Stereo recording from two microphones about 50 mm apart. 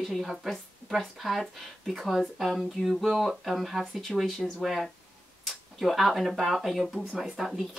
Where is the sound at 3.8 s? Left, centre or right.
Centre.